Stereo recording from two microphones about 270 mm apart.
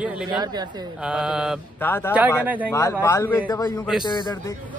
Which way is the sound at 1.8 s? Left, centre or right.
Centre.